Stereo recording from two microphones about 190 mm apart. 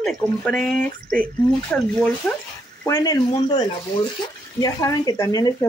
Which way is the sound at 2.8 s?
20° left (ahead or behind).